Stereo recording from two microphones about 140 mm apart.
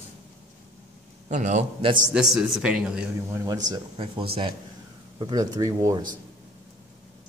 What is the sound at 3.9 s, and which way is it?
Speech, 40° right (ahead or behind).